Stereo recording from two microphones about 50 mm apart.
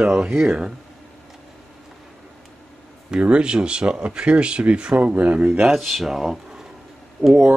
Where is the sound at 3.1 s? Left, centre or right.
Right.